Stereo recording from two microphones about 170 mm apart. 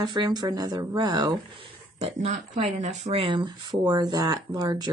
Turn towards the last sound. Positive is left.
turn(degrees=-25)  # may be behind; listen again after turning